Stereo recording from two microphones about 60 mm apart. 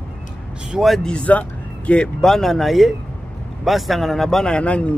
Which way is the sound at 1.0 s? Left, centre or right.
Centre.